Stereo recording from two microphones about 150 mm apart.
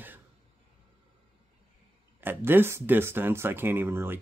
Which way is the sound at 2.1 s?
15° right (ahead or behind).